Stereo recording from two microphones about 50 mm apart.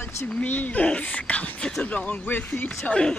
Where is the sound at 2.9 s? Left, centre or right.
Centre.